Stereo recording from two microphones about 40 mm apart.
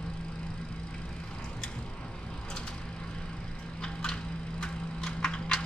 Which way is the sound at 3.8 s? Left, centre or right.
Centre.